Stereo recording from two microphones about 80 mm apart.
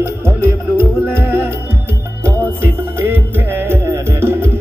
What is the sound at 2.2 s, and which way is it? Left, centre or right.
Music, right.